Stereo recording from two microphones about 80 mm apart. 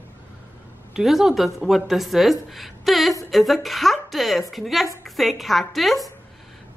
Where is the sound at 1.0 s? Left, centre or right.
Centre.